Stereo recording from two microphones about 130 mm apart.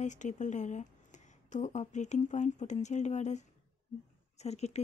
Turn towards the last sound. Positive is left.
turn(degrees=55)  # may be behind; listen again after turning